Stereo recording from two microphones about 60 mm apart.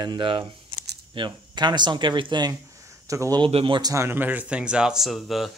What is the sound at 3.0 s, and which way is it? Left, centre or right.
Speech, right.